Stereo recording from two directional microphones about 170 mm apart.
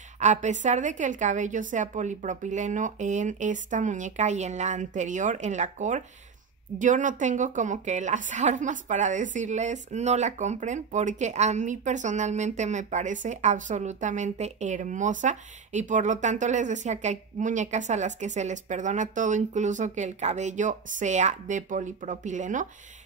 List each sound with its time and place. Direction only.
0.2 s a woman's voice: 45° right (ahead or behind)